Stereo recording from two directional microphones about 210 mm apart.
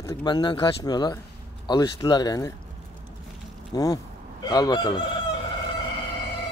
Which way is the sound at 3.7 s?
15° left (ahead or behind).